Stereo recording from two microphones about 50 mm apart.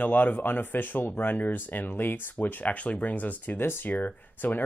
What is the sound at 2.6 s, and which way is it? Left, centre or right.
Speech, left.